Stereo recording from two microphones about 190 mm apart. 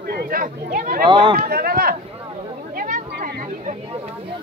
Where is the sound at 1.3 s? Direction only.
50° right (ahead or behind).